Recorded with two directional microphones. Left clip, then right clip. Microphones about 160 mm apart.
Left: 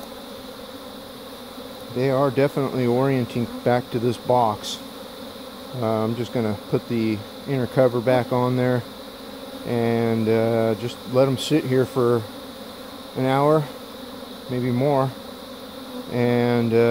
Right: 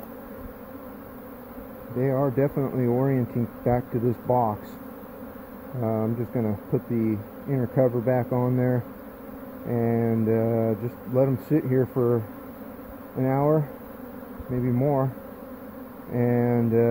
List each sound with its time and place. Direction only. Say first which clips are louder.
2.0 s bee: left 4 dB; 20° left (ahead or behind)
5.8 s bee: left 4 dB; 20° left (ahead or behind)
13.2 s bee: left 4 dB; 15° left (ahead or behind)
16.1 s bee: left 3 dB; 15° left (ahead or behind)